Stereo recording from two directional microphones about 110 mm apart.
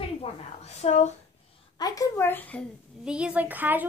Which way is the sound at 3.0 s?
10° right (ahead or behind).